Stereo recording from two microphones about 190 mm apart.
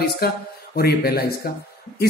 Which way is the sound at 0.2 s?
55° left (ahead or behind).